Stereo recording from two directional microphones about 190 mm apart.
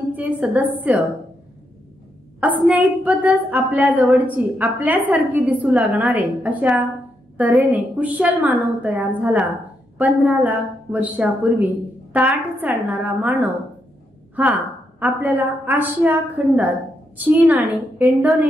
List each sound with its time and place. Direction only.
0.1 s a woman's voice: 10° right (ahead or behind)
2.4 s a woman's voice: 10° right (ahead or behind)
15.0 s a woman's voice: 10° right (ahead or behind)